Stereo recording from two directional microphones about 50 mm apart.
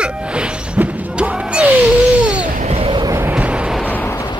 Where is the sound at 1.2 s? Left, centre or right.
Right.